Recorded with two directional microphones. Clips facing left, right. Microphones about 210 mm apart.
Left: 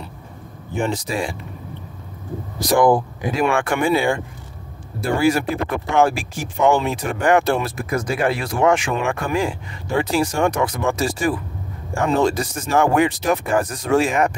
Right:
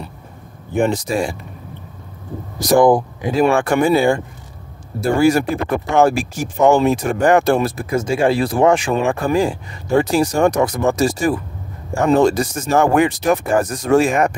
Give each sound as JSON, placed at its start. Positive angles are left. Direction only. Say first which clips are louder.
{"t": 0.7, "sound": "speech", "louder": "right 5 dB", "side_deg": -50}
{"t": 3.3, "sound": "speech", "louder": "right 5 dB", "side_deg": -35}
{"t": 7.8, "sound": "speech", "louder": "right 4 dB", "side_deg": -25}